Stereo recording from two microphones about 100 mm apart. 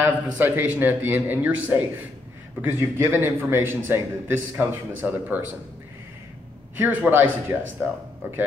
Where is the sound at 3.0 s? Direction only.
20° right (ahead or behind).